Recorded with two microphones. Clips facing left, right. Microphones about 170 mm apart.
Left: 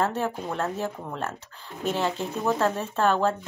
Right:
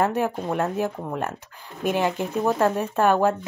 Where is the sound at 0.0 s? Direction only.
15° right (ahead or behind).